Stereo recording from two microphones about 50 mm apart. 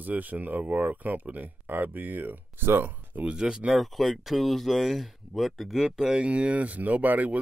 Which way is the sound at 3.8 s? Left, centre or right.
Centre.